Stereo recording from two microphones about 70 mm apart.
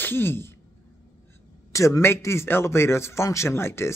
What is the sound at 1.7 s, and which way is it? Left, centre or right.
Speech, left.